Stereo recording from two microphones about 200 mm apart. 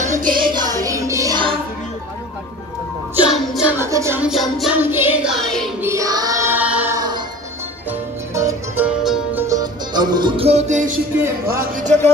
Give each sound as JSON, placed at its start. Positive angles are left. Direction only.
{"t": 0.0, "sound": "music", "side_deg": -40}
{"t": 0.5, "sound": "music", "side_deg": -20}
{"t": 3.3, "sound": "music", "side_deg": -5}
{"t": 5.8, "sound": "child singing", "side_deg": -15}
{"t": 8.4, "sound": "music", "side_deg": -10}
{"t": 11.4, "sound": "speech", "side_deg": -45}